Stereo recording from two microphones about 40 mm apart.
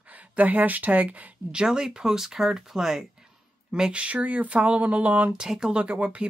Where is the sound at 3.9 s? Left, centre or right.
Right.